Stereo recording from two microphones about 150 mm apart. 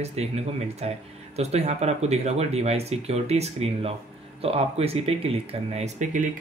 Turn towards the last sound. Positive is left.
turn(degrees=-50)  # may be behind; listen again after turning